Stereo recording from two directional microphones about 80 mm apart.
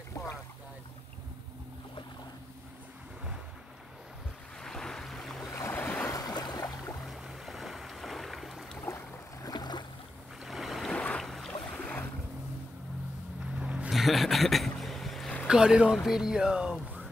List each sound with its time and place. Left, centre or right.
0.2 s boat: left
4.6 s boat: centre
5.6 s boat: left
6.0 s boat: left
7.1 s boat: centre
8.8 s boat: left
9.5 s boat: left
10.4 s boat: centre
10.9 s boat: centre
13.6 s vehicle: centre
13.9 s boat: centre
15.4 s speech: centre